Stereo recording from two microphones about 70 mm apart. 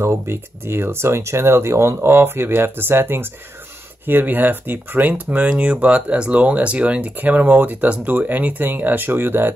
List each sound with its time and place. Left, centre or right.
0.0 s speech: right